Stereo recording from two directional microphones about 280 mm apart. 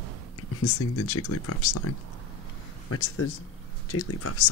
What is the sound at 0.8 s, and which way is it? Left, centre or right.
Speech, left.